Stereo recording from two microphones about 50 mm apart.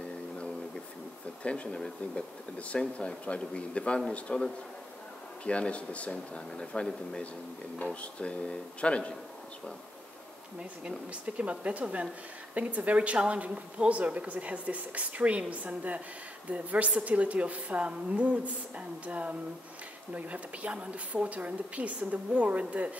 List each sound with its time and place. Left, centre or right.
1.4 s speech: left
11.2 s a woman's voice: right